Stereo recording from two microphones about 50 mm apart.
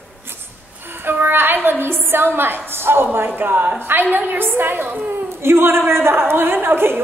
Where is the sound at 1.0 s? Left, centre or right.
Right.